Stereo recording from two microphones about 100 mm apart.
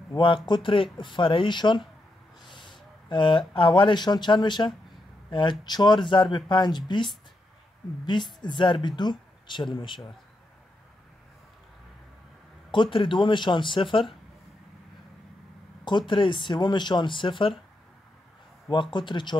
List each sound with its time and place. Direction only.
0.2 s speech: 55° left (ahead or behind)
8.0 s speech: 50° left (ahead or behind)
12.7 s speech: 55° left (ahead or behind)
15.8 s speech: 50° left (ahead or behind)
18.7 s speech: 50° left (ahead or behind)